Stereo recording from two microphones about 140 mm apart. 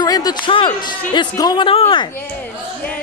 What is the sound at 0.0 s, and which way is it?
A man's voice, 30° left (ahead or behind).